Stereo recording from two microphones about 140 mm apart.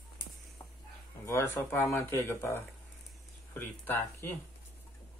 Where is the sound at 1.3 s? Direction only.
15° left (ahead or behind).